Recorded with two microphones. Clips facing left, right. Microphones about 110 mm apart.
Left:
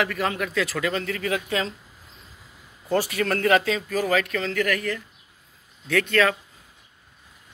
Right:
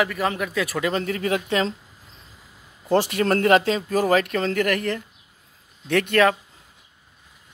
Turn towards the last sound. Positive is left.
turn(degrees=-20)  # may be behind; listen again after turning